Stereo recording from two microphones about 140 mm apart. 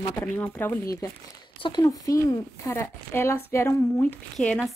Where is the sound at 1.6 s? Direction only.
30° left (ahead or behind).